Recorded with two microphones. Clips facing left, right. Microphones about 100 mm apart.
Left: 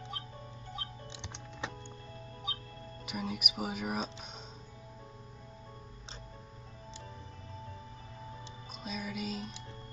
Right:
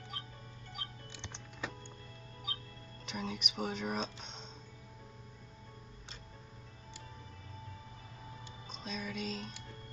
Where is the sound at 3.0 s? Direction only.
10° left (ahead or behind).